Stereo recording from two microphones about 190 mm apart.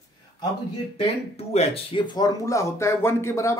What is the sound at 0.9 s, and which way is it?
Speech, 30° left (ahead or behind).